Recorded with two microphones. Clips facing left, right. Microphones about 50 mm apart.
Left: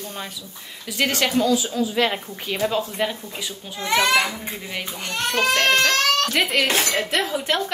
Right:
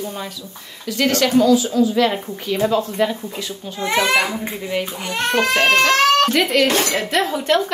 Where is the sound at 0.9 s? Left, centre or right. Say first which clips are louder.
Right 5 dB; centre.